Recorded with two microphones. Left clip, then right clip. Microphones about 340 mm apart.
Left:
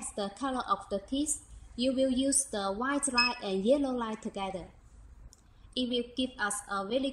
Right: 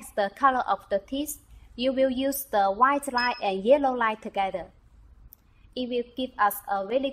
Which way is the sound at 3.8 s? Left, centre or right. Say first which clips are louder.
Right 9 dB; right.